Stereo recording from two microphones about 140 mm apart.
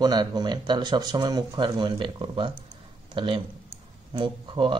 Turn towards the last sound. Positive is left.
turn(degrees=-35)  # may be behind; listen again after turning